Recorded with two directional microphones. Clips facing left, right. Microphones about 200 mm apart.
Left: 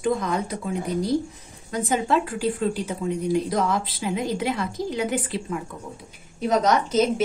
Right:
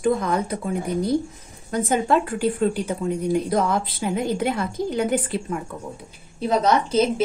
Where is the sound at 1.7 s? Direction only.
55° right (ahead or behind).